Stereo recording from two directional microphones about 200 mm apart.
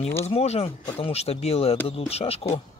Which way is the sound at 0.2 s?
30° left (ahead or behind).